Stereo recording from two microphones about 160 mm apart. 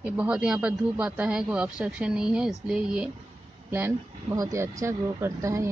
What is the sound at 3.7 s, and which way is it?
Speech, 15° right (ahead or behind).